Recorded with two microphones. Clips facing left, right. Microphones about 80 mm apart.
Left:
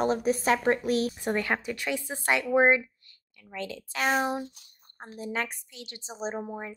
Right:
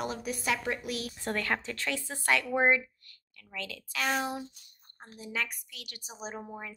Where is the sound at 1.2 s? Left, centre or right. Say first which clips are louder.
Left 4 dB; centre.